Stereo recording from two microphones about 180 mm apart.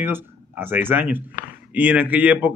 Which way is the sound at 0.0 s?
10° right (ahead or behind).